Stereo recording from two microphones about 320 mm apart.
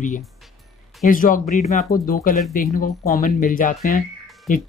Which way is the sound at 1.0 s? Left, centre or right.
Left.